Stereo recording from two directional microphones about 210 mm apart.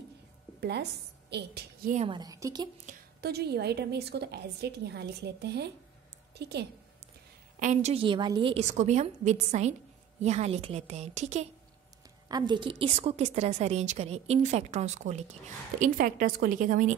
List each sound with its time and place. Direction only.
0.6 s a woman's voice: 55° right (ahead or behind)
2.0 s a woman's voice: 20° right (ahead or behind)
2.9 s a woman's voice: 50° right (ahead or behind)
7.5 s a woman's voice: 35° right (ahead or behind)
12.3 s a woman's voice: 20° right (ahead or behind); by 16.9 s 40° right (ahead or behind)